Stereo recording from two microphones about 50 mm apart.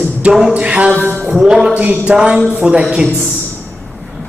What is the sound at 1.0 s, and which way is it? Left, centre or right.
Music, right.